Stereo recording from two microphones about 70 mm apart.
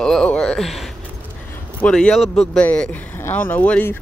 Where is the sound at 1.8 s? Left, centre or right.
Centre.